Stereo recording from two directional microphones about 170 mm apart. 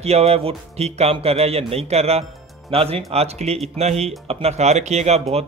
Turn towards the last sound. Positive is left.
turn(degrees=-35)  # may be behind; listen again after turning